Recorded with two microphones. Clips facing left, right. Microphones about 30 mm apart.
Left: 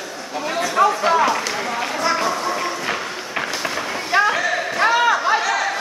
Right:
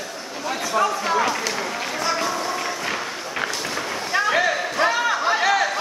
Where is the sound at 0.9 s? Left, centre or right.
Centre.